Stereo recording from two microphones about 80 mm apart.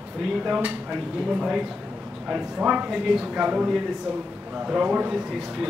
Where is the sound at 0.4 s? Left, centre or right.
Centre.